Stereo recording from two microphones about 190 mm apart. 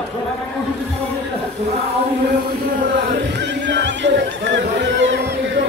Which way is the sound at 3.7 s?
70° right (ahead or behind).